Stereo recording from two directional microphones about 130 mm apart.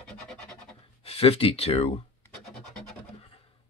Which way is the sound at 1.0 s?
50° left (ahead or behind).